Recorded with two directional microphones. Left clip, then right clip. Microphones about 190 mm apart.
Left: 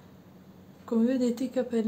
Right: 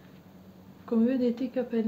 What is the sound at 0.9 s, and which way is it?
Speech, centre (ahead or behind).